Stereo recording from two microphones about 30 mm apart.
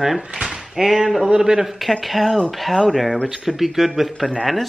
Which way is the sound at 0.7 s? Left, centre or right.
Centre.